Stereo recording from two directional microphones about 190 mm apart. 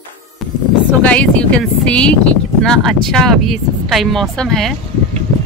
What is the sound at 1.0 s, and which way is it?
Speech, 5° left (ahead or behind).